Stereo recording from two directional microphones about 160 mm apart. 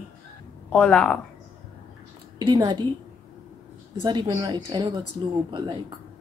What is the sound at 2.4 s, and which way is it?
Speech, 25° right (ahead or behind).